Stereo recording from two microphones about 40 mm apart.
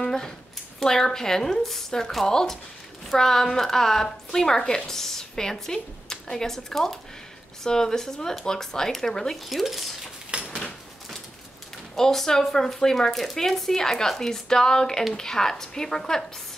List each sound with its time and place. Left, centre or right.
0.0 s a woman's voice: centre
9.5 s speech: centre
10.3 s door: right
12.0 s a woman's voice: centre